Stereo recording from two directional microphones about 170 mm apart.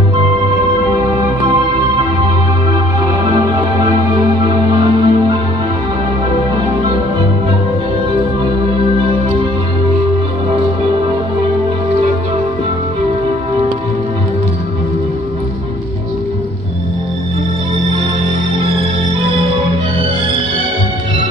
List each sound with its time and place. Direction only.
3.3 s music: 25° right (ahead or behind)